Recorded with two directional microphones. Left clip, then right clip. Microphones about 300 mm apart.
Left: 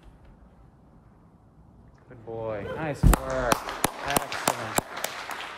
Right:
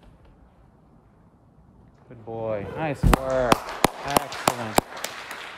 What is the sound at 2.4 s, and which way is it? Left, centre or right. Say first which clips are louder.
Basketball bounce: right 4 dB; right.